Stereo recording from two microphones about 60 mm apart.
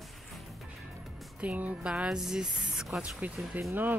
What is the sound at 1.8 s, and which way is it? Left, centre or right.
Speech, centre.